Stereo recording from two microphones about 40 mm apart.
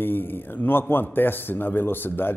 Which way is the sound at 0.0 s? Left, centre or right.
Left.